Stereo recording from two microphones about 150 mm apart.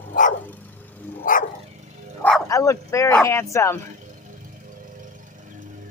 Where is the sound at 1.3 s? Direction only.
65° left (ahead or behind).